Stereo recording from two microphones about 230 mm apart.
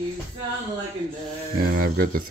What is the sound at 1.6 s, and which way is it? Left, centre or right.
Speech, right.